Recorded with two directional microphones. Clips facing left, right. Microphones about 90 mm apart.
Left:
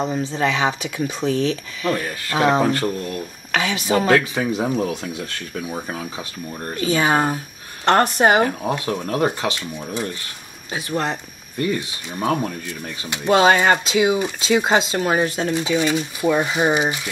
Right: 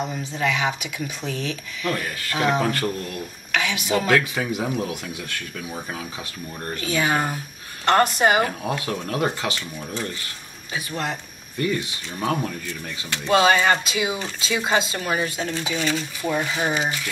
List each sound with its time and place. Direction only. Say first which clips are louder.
0.0 s speech: left 4 dB; 30° left (ahead or behind)
9.6 s speech: left 3 dB; 15° left (ahead or behind)
11.6 s speech: left 2 dB; 25° left (ahead or behind)
15.4 s speech: left 6 dB; 20° left (ahead or behind)